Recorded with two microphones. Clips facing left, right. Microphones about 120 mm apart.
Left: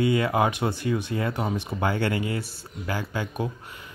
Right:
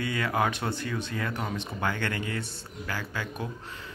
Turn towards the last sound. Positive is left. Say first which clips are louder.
# left 5 dB
turn(degrees=15)  # may be behind; listen again after turning